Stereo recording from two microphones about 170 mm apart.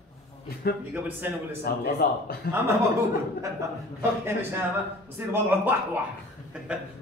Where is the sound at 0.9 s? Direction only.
10° right (ahead or behind).